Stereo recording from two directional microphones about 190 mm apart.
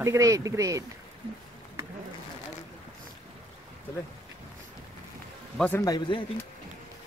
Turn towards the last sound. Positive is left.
turn(degrees=25)  # may be behind; listen again after turning